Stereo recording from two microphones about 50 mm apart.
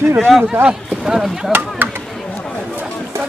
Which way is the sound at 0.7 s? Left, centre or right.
Centre.